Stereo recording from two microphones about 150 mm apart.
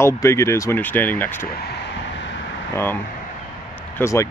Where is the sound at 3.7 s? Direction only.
15° left (ahead or behind).